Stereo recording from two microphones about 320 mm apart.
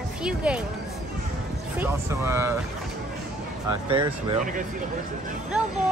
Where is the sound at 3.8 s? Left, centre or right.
Centre.